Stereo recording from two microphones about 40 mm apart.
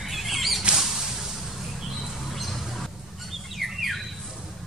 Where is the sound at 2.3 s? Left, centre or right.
Centre.